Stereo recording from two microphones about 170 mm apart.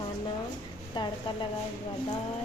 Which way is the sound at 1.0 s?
25° left (ahead or behind).